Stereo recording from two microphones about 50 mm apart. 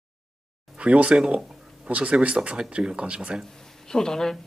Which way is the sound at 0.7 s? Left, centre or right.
Right.